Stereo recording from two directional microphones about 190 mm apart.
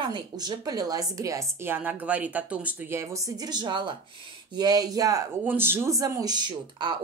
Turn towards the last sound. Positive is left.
turn(degrees=-25)  # may be behind; listen again after turning